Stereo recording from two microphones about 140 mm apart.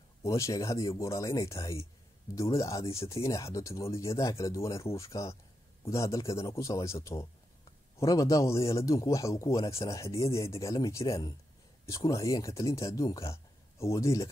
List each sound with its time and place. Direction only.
0.2 s speech: 20° left (ahead or behind)